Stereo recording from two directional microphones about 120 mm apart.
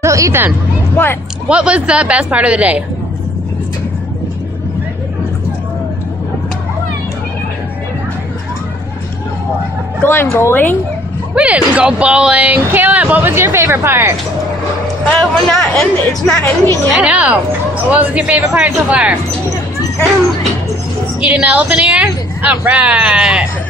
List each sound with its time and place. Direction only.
0.0 s speech: 25° right (ahead or behind)
1.5 s speech: 10° right (ahead or behind)
10.0 s speech: 20° left (ahead or behind)
11.3 s speech: 10° right (ahead or behind)
15.1 s speech: 5° left (ahead or behind)
16.3 s speech: 25° left (ahead or behind)
16.9 s speech: 10° right (ahead or behind)
21.2 s a woman's voice: 10° right (ahead or behind)